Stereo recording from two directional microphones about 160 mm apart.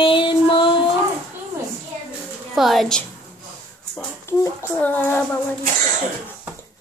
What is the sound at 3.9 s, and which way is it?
Speech, 15° left (ahead or behind).